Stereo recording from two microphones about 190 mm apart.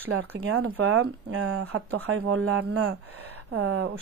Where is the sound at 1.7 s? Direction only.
90° right.